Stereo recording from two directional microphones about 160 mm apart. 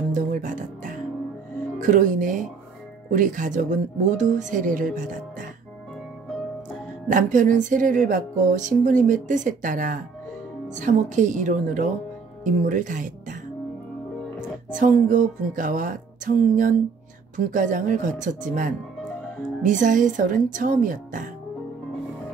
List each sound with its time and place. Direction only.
0.1 s music: 55° right (ahead or behind)
1.8 s speech: 55° right (ahead or behind)
7.1 s speech: 55° right (ahead or behind)
14.8 s speech: 55° right (ahead or behind)